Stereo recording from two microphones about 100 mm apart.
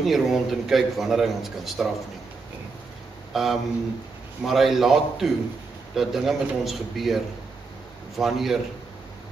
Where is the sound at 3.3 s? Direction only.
Centre (ahead or behind).